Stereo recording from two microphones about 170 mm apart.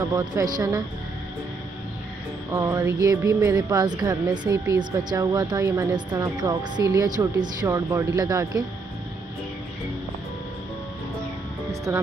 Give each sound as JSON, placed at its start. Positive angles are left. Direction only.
{"t": 0.0, "sound": "speech", "side_deg": -20}
{"t": 2.5, "sound": "speech", "side_deg": -15}
{"t": 11.9, "sound": "speech", "side_deg": -15}